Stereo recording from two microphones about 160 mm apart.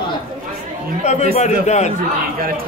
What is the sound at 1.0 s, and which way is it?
Speech, 45° left (ahead or behind).